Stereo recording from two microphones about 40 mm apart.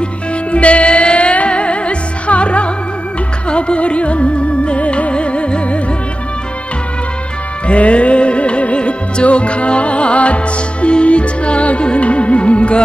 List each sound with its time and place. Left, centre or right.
0.5 s music: left
7.6 s music: left